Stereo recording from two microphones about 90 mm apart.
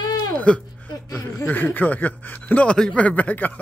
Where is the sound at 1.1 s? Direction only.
30° left (ahead or behind).